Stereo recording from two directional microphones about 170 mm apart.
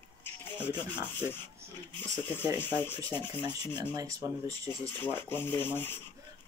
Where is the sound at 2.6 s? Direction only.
10° left (ahead or behind).